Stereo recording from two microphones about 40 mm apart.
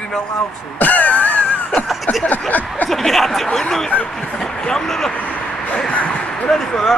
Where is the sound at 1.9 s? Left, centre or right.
Centre.